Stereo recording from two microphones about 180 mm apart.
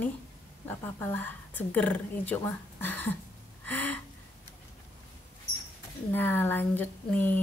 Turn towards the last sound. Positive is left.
turn(degrees=10)  # may be behind; listen again after turning